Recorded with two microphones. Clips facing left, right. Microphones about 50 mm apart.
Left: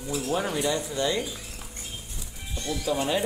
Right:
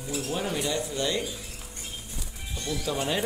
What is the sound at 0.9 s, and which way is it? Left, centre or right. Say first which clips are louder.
Speech: left 2 dB; left.